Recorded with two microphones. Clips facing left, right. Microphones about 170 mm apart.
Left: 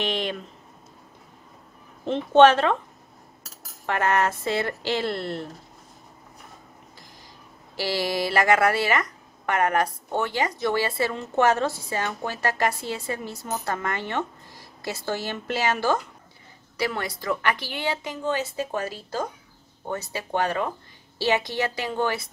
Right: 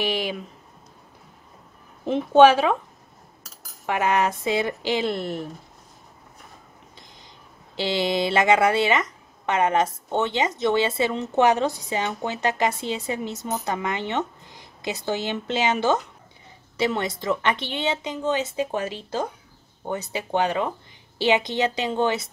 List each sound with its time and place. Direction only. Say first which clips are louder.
0.0 s a sound: right 1 dB; 5° right (ahead or behind)
2.0 s speech: right 1 dB; 5° right (ahead or behind)
3.8 s speech: right 1 dB; 10° right (ahead or behind)
7.7 s a woman's voice: right 3 dB; 20° right (ahead or behind)